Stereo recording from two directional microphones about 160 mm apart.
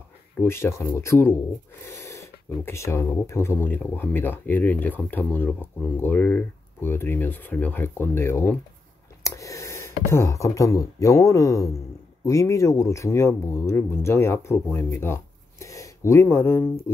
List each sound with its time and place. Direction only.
0.4 s speech: 15° left (ahead or behind)